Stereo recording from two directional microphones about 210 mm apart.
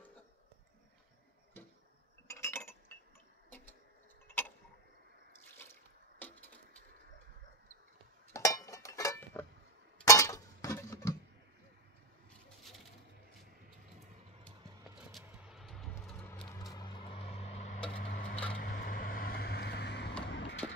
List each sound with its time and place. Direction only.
2.2 s chink: 10° left (ahead or behind)
5.6 s water: 10° left (ahead or behind)
8.3 s a sound: 15° left (ahead or behind)
15.0 s vehicle: centre (ahead or behind); by 17.7 s 30° left (ahead or behind)
17.9 s wood: 45° left (ahead or behind)
18.3 s a sound: 5° left (ahead or behind)
18.6 s vehicle: 45° left (ahead or behind)